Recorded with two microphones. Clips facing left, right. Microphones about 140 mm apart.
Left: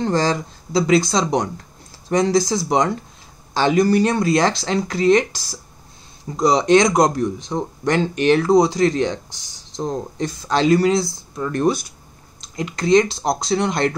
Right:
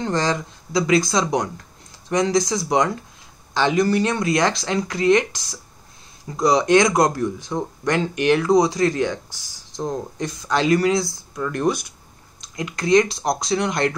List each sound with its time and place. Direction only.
0.0 s speech: 30° left (ahead or behind)
3.5 s speech: 40° left (ahead or behind); by 9.2 s 25° left (ahead or behind)
10.2 s speech: 30° left (ahead or behind)
12.5 s speech: 25° left (ahead or behind)